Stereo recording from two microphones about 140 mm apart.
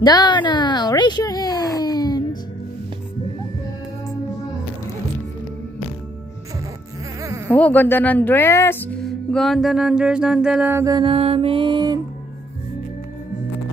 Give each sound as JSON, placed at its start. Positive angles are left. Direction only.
{"t": 0.0, "sound": "a sound", "side_deg": 30}
{"t": 7.2, "sound": "a sound", "side_deg": -20}
{"t": 7.5, "sound": "speech", "side_deg": 10}
{"t": 9.0, "sound": "mantra", "side_deg": 0}
{"t": 10.7, "sound": "mantra", "side_deg": -20}
{"t": 11.0, "sound": "music", "side_deg": -45}